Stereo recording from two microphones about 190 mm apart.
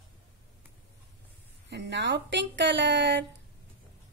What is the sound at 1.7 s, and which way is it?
A woman's voice, 65° right (ahead or behind).